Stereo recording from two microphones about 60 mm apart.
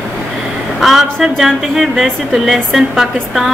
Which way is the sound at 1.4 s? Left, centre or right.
Centre.